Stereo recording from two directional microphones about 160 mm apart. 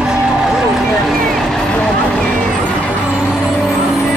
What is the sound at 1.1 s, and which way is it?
Vehicle, centre (ahead or behind).